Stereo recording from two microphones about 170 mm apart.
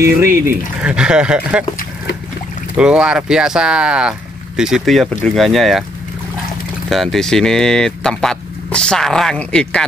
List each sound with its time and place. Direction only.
0.0 s speech: 15° right (ahead or behind)
0.8 s speech: 5° right (ahead or behind)
2.8 s speech: 5° right (ahead or behind)
6.9 s speech: centre (ahead or behind)